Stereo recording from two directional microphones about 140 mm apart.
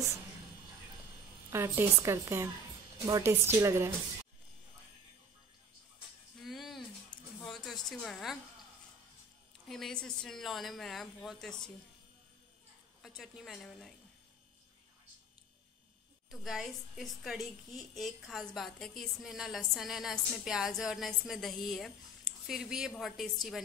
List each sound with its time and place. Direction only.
1.5 s a woman's voice: 20° right (ahead or behind)
6.4 s a sound: centre (ahead or behind)
7.4 s a woman's voice: centre (ahead or behind)
9.7 s a woman's voice: 5° left (ahead or behind)
13.0 s a woman's voice: centre (ahead or behind)
16.3 s a woman's voice: centre (ahead or behind)